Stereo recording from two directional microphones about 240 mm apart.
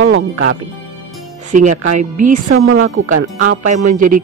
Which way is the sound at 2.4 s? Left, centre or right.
Right.